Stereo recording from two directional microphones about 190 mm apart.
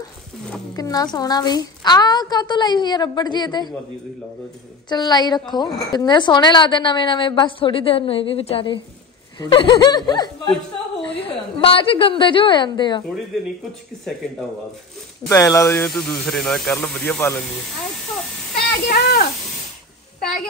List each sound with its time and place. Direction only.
0.7 s a woman's voice: 20° left (ahead or behind)
4.8 s a woman's voice: 20° left (ahead or behind)
15.2 s speech: 15° left (ahead or behind)
15.9 s speech: centre (ahead or behind)
18.9 s speech: 60° left (ahead or behind)